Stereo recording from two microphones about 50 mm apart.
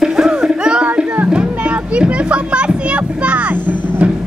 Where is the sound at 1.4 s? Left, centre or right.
Right.